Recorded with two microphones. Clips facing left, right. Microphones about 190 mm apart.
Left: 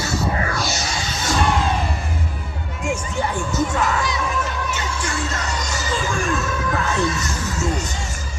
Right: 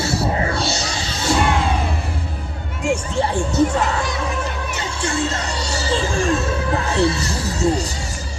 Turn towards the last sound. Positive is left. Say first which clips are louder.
# right 4 dB
turn(degrees=-35)  # may be behind; listen again after turning